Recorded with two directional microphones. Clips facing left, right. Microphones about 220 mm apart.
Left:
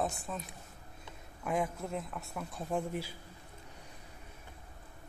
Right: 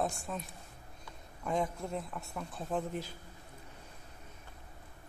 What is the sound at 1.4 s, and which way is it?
Speech, 5° left (ahead or behind).